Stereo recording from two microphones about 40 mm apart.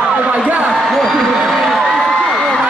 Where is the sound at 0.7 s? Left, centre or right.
Centre.